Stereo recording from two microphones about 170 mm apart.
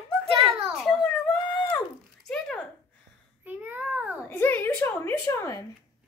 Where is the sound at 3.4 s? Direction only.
10° right (ahead or behind).